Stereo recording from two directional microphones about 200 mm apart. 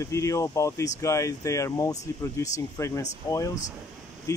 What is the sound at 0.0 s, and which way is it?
Speech, 15° left (ahead or behind).